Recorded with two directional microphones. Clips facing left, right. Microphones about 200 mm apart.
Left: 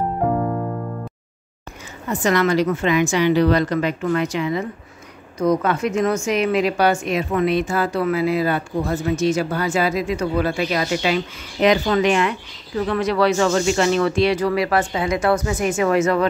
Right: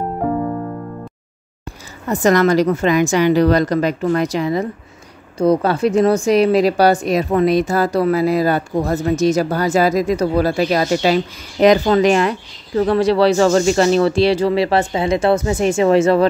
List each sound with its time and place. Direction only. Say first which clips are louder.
2.0 s speech: right 5 dB; 40° right (ahead or behind)